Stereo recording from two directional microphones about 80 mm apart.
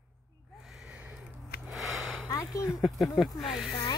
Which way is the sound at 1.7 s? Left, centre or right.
Centre.